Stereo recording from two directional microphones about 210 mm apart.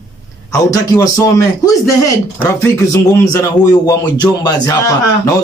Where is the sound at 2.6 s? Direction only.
15° left (ahead or behind).